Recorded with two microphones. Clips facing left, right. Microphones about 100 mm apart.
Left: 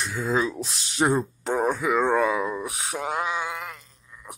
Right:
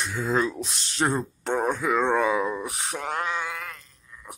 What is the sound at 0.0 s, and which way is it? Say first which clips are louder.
Speech: even; centre (ahead or behind).